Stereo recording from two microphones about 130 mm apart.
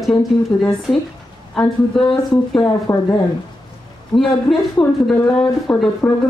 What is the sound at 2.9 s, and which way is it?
Speech, 25° left (ahead or behind).